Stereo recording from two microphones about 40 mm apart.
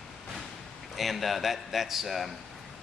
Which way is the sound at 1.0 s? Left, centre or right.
Centre.